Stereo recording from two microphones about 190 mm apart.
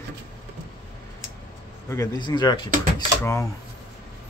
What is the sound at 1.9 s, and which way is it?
Speech, 20° left (ahead or behind).